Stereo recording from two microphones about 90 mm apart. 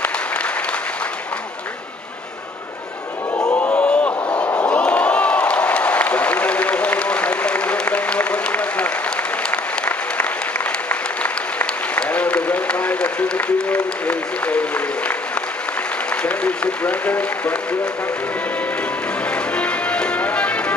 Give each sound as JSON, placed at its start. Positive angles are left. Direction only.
{"t": 3.3, "sound": "a sound", "side_deg": 15}
{"t": 11.5, "sound": "applause", "side_deg": 15}
{"t": 16.2, "sound": "music", "side_deg": 15}
{"t": 19.5, "sound": "music", "side_deg": 15}